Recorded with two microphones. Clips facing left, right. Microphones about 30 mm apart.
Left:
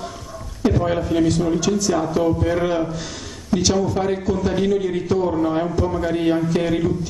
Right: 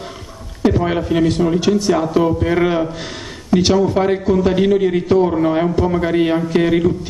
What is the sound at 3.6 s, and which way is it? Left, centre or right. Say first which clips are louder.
Speech: right 5 dB; right.